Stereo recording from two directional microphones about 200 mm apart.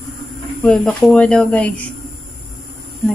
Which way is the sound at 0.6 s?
5° left (ahead or behind).